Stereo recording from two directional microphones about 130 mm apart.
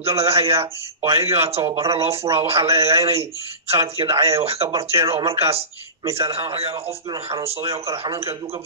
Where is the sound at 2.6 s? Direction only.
25° right (ahead or behind).